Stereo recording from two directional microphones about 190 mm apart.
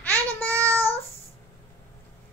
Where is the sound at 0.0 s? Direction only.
10° left (ahead or behind).